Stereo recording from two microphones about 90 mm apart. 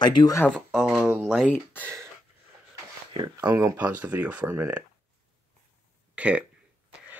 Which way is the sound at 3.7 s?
15° right (ahead or behind).